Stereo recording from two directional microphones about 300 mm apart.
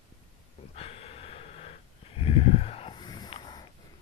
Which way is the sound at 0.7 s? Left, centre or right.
Centre.